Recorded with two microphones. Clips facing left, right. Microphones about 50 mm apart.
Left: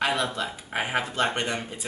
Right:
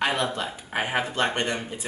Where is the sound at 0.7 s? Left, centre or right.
Centre.